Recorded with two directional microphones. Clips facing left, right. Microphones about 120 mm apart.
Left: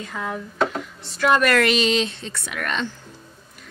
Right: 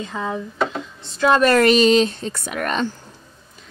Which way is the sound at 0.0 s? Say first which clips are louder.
Right 3 dB; 20° right (ahead or behind).